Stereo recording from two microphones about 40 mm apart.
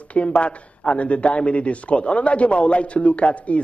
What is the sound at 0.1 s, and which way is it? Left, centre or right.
A man's voice, left.